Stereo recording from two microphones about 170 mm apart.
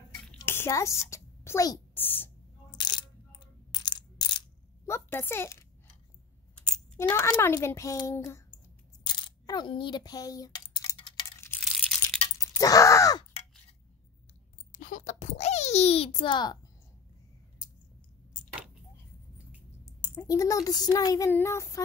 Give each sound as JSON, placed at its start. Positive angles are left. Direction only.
{"t": 0.4, "sound": "a child's voice", "side_deg": 15}
{"t": 2.8, "sound": "coin", "side_deg": 25}
{"t": 4.8, "sound": "a child's voice", "side_deg": 15}
{"t": 7.0, "sound": "speech", "side_deg": 20}
{"t": 9.0, "sound": "coin", "side_deg": 25}
{"t": 11.6, "sound": "coin", "side_deg": 0}
{"t": 12.4, "sound": "groan", "side_deg": 20}
{"t": 14.7, "sound": "a sound", "side_deg": 55}
{"t": 19.8, "sound": "a sound", "side_deg": 15}
{"t": 20.2, "sound": "speech", "side_deg": 20}